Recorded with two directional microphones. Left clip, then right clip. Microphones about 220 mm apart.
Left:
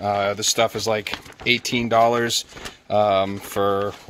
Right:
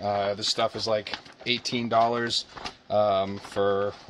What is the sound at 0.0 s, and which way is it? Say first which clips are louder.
Speech: left 5 dB; 40° left (ahead or behind).